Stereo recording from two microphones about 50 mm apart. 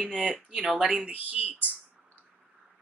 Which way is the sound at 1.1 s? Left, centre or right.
Right.